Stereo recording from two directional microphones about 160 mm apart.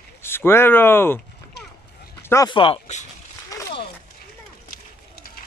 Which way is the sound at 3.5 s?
20° left (ahead or behind).